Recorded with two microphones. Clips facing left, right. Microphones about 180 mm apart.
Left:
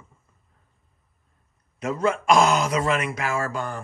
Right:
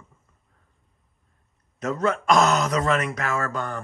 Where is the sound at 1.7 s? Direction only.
40° right (ahead or behind).